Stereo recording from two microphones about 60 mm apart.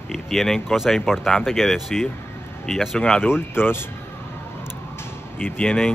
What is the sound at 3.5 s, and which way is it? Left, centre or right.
Speech, left.